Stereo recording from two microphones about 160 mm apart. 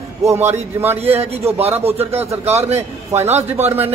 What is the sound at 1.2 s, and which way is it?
A man's voice, 40° right (ahead or behind).